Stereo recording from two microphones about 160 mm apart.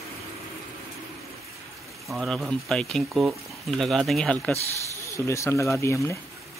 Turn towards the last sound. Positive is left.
turn(degrees=15)  # may be behind; listen again after turning